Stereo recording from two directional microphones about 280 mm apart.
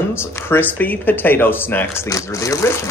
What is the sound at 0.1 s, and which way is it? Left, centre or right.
Speech, centre.